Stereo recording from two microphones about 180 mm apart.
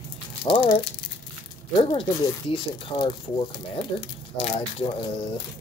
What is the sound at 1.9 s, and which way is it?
Speech, 30° left (ahead or behind).